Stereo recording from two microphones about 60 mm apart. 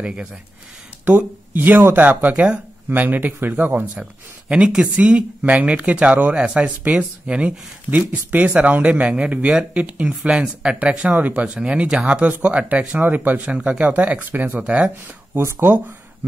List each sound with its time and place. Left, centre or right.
0.0 s speech: centre
1.0 s speech: right
4.0 s speech: centre